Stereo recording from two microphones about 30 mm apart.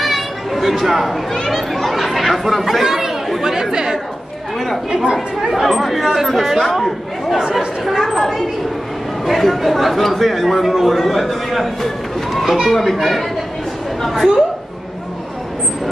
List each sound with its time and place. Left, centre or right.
0.0 s a sound: centre
1.5 s speech: centre; by 4.0 s right
5.5 s a man's voice: centre